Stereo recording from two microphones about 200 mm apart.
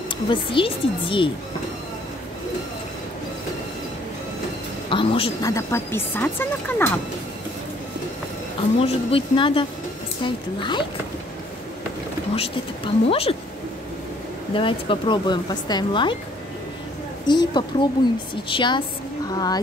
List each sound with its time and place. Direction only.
0.3 s speech: 25° left (ahead or behind)
4.8 s speech: 25° left (ahead or behind)
5.5 s speech: 15° left (ahead or behind)
8.7 s speech: 30° left (ahead or behind)
12.4 s speech: 30° left (ahead or behind)
14.5 s speech: 25° left (ahead or behind)
17.3 s speech: 20° left (ahead or behind)